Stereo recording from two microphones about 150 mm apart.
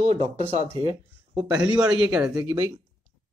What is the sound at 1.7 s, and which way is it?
Speech, 5° right (ahead or behind).